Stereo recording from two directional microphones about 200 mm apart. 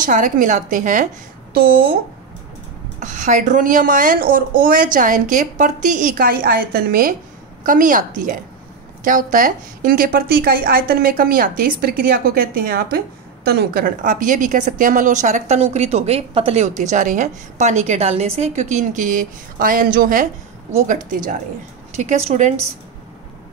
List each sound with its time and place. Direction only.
0.0 s a woman's voice: 40° right (ahead or behind)
3.0 s a woman's voice: 40° right (ahead or behind)